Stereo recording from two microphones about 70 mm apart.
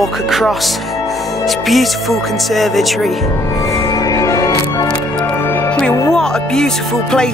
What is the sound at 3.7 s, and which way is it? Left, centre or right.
Music, left.